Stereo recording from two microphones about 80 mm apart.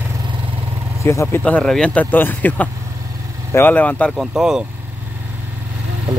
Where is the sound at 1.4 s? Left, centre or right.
Centre.